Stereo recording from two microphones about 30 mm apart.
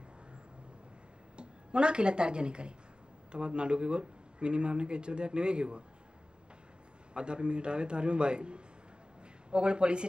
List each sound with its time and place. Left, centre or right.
1.3 s speech: right
7.2 s speech: right